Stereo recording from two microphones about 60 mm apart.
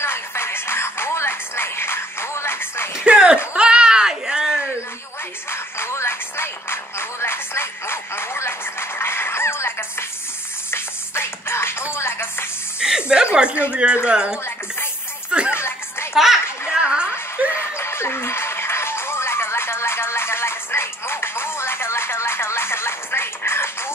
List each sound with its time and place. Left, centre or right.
0.0 s music: left
3.0 s a sound: centre
5.5 s music: left
12.8 s snake: centre
13.7 s speech: centre
15.5 s music: left
16.7 s music: centre
17.6 s music: left